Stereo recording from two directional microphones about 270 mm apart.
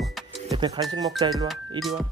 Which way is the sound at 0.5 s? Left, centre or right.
Centre.